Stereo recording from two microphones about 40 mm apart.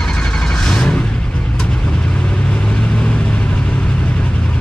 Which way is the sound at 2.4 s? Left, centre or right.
Left.